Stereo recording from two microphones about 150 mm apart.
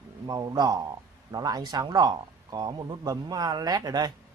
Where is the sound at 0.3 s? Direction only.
25° right (ahead or behind).